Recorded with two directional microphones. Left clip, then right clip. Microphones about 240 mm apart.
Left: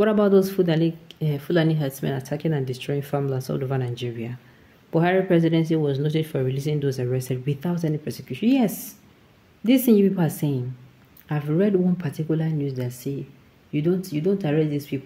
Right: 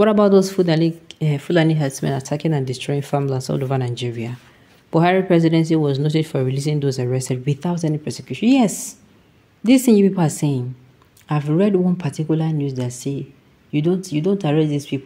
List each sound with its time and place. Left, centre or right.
0.0 s speech: right